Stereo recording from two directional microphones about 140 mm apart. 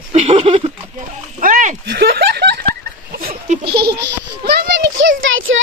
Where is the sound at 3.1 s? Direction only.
90° right.